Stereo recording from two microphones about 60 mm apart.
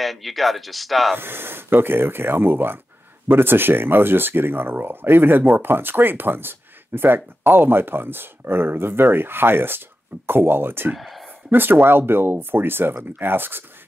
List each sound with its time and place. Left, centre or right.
0.0 s speech: centre
1.1 s speech: right
11.0 s speech: centre
11.5 s speech: right